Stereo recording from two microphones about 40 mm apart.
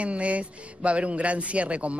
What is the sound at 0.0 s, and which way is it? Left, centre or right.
Speech, right.